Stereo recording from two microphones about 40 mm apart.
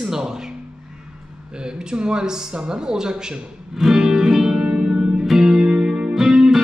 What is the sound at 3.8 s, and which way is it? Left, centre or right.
Music, centre.